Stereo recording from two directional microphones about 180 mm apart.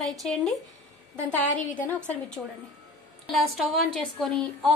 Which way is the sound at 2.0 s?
5° left (ahead or behind).